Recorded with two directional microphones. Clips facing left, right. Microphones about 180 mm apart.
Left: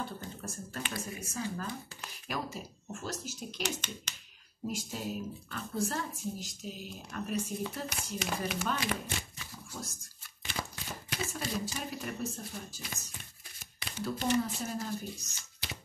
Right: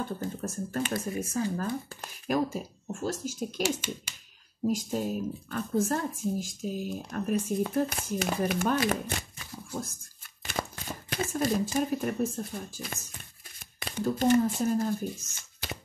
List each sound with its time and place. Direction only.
0.2 s speech: 45° right (ahead or behind)
3.6 s speech: 10° right (ahead or behind)
4.6 s speech: 45° right (ahead or behind)
10.6 s a sound: 55° right (ahead or behind)
11.1 s speech: 50° right (ahead or behind)